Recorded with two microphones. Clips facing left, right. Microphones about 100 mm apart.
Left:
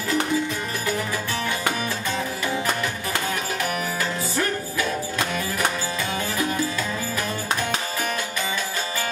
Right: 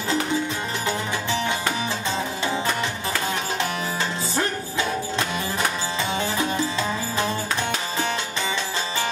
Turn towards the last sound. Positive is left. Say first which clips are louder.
# right 2 dB
turn(degrees=-25)  # may be behind; listen again after turning